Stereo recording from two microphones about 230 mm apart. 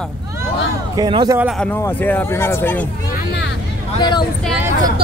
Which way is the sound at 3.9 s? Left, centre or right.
Centre.